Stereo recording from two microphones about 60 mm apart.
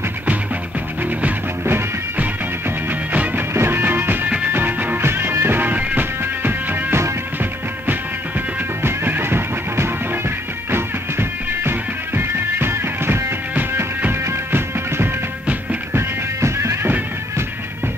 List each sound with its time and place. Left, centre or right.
3.1 s music: right
3.5 s music: right
5.6 s music: right
8.8 s music: right